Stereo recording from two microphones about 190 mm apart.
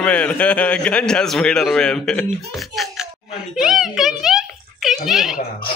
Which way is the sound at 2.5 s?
Centre (ahead or behind).